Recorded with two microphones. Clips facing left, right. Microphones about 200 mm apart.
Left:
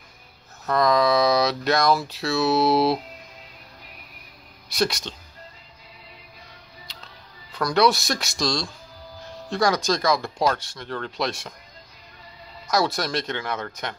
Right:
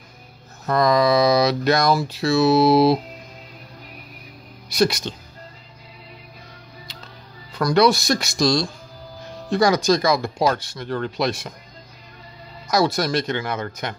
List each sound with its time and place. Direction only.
0.7 s speech: centre (ahead or behind)
4.6 s speech: centre (ahead or behind)
6.9 s music: centre (ahead or behind)
7.5 s speech: centre (ahead or behind)
12.6 s speech: centre (ahead or behind)